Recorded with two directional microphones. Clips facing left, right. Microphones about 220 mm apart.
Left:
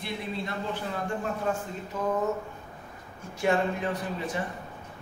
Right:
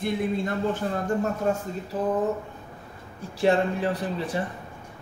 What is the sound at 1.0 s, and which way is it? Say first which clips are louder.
Speech: right 5 dB; 40° right (ahead or behind).